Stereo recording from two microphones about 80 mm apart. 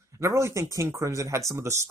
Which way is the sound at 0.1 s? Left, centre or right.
Right.